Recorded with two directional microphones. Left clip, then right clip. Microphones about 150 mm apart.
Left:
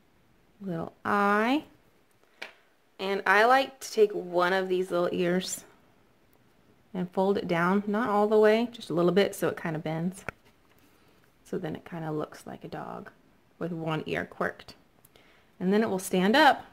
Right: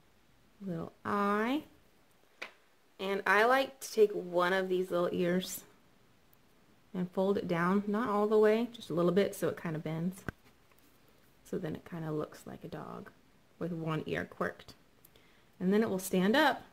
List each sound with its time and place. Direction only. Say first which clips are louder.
0.7 s speech: left 7 dB; 20° left (ahead or behind)
3.0 s speech: left 5 dB; 15° left (ahead or behind)
6.9 s speech: left 5 dB; 10° left (ahead or behind)
11.4 s speech: left 4 dB; 10° left (ahead or behind)